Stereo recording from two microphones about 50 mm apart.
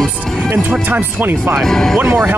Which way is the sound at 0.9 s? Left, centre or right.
Right.